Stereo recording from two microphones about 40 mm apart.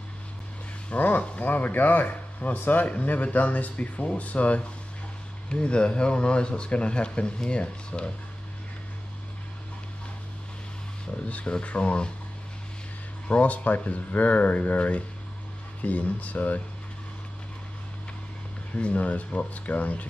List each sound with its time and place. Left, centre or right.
0.9 s speech: left
5.5 s speech: left
11.2 s speech: left
13.3 s speech: left
18.8 s speech: left